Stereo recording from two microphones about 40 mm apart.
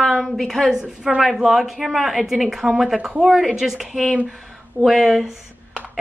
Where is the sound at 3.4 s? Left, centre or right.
Centre.